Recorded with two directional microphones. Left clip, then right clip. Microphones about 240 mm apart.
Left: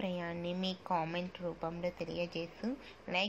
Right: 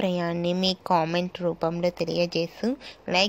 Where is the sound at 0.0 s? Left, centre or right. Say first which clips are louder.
Right 13 dB; right.